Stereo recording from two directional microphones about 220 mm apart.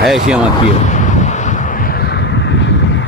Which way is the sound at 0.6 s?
35° left (ahead or behind).